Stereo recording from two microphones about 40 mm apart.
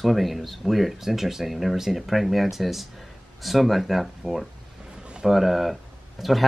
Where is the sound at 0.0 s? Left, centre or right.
Centre.